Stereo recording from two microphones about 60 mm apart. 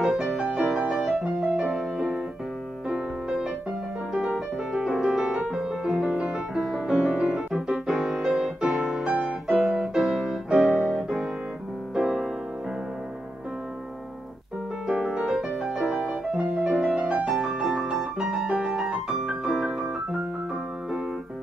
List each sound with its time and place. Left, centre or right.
0.0 s music: centre
14.9 s piano: centre
16.3 s music: right
16.6 s music: centre
18.8 s piano: centre